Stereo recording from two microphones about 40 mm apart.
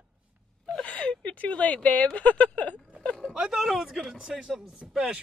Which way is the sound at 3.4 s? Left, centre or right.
Centre.